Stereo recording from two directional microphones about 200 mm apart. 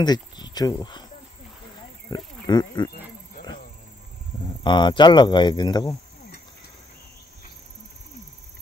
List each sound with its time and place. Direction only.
0.0 s speech: 20° left (ahead or behind)
2.0 s wild animals: 20° left (ahead or behind)
4.6 s speech: 25° left (ahead or behind)